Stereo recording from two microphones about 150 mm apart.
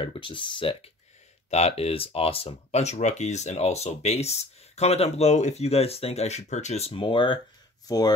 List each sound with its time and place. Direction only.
0.0 s speech: 35° left (ahead or behind)